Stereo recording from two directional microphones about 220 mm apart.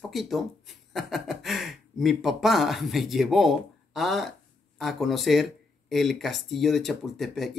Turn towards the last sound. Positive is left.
turn(degrees=0)  # may be behind; listen again after turning